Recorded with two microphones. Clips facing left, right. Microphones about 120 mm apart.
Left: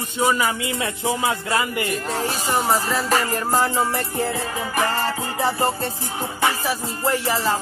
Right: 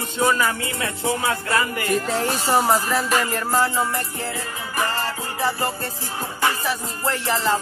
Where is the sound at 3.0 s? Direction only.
35° left (ahead or behind).